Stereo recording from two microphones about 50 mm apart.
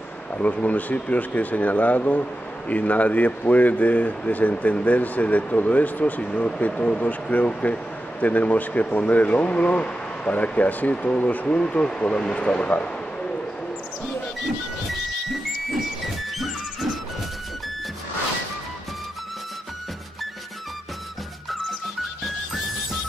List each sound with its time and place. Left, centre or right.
0.4 s speech: left